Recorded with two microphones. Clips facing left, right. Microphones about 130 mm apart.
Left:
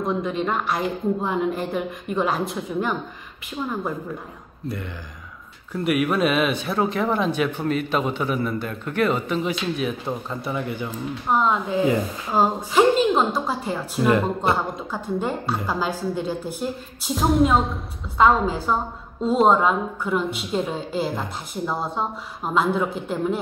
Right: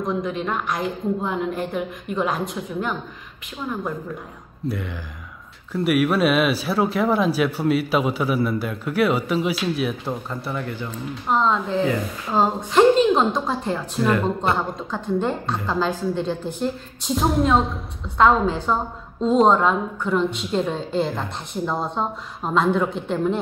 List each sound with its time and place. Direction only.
0.0 s speech: 5° left (ahead or behind)
5.7 s speech: centre (ahead or behind)
14.0 s speech: 20° left (ahead or behind)
14.5 s a woman's voice: 10° left (ahead or behind)